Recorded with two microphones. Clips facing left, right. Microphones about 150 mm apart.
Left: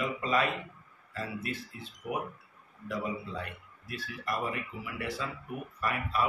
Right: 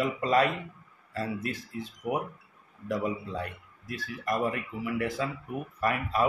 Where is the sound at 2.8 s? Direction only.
40° right (ahead or behind).